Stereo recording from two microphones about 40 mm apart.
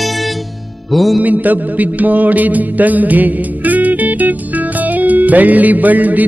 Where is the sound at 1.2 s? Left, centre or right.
Right.